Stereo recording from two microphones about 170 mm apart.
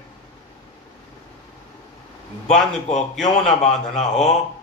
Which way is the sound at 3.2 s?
40° left (ahead or behind).